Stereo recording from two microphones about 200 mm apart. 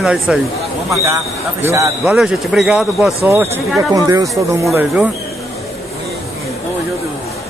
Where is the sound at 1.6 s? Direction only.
10° right (ahead or behind).